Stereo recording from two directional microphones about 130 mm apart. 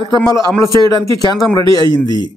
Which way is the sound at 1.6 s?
40° right (ahead or behind).